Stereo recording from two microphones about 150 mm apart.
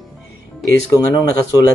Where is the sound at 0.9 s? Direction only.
25° left (ahead or behind).